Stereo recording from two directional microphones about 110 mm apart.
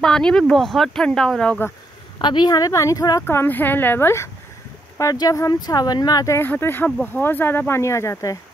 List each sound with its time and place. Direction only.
0.0 s speech: 5° left (ahead or behind)
2.1 s speech: 40° left (ahead or behind)
3.3 s speech: 20° left (ahead or behind)